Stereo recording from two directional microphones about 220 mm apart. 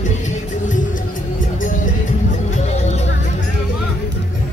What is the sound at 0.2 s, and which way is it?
Music, 35° left (ahead or behind).